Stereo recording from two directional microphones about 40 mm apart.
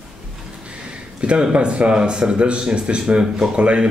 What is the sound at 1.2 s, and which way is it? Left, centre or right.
Speech, right.